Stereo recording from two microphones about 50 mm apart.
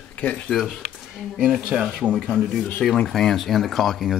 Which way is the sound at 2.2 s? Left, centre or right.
Centre.